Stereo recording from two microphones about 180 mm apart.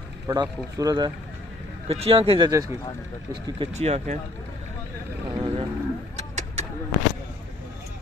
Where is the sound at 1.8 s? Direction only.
30° right (ahead or behind).